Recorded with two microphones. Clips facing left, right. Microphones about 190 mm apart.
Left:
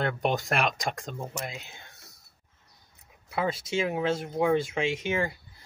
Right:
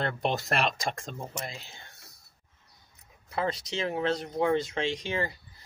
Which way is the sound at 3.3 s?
5° left (ahead or behind).